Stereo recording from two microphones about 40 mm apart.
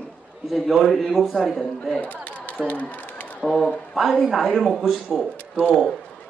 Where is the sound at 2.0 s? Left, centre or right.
Left.